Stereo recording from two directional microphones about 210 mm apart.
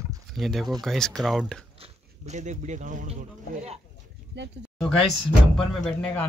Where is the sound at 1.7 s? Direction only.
35° right (ahead or behind).